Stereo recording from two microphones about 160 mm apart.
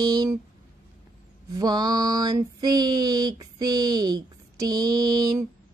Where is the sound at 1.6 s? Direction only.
25° right (ahead or behind).